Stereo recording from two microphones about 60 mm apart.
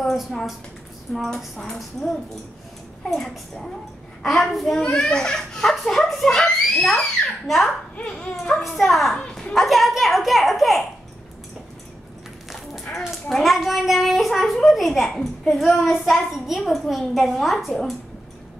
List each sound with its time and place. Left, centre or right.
0.0 s a woman's voice: centre
8.0 s a child's voice: centre
8.6 s a child's voice: centre
13.3 s a child's voice: centre